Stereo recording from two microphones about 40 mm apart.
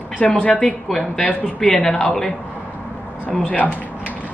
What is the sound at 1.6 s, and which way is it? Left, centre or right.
Speech, left.